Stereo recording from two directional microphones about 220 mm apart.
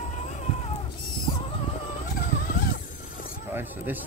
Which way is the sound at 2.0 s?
40° left (ahead or behind).